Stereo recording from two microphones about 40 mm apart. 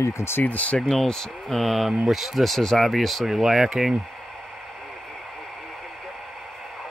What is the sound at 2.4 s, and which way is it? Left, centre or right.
Speech, centre.